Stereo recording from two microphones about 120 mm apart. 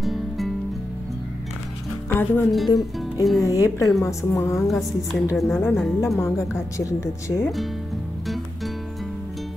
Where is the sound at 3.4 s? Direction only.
25° left (ahead or behind).